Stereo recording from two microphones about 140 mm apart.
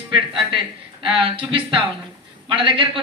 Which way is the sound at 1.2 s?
40° right (ahead or behind).